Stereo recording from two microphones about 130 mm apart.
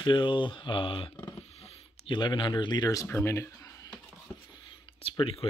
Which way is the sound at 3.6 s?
25° left (ahead or behind).